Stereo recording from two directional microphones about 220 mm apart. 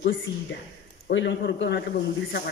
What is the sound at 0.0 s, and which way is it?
A woman's voice, 55° left (ahead or behind).